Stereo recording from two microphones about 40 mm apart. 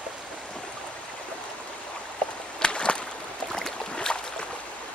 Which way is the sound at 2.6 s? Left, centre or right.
Left.